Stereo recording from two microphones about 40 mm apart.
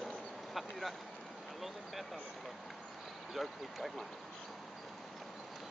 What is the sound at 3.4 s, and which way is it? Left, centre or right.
Speech, centre.